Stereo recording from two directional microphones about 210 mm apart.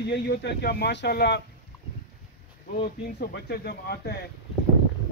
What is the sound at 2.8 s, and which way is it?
Speech, 50° left (ahead or behind).